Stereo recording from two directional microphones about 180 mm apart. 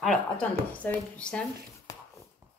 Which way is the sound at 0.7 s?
10° left (ahead or behind).